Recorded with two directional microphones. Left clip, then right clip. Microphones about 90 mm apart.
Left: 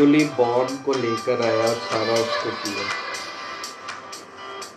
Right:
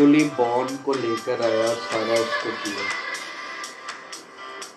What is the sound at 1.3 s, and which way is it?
Music, centre (ahead or behind).